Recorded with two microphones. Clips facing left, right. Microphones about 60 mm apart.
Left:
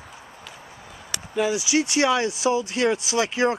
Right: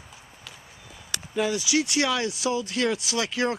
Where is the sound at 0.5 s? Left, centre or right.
Left.